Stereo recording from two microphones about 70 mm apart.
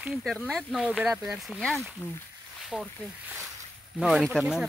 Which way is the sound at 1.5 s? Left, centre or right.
Centre.